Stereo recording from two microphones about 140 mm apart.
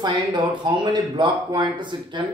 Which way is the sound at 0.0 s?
30° right (ahead or behind).